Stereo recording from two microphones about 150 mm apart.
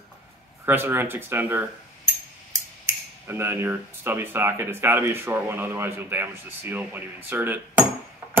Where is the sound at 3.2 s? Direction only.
15° right (ahead or behind).